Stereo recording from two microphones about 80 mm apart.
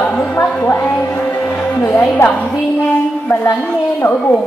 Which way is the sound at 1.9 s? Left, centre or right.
Left.